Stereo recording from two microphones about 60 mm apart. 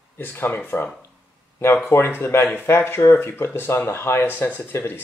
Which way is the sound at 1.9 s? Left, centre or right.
Left.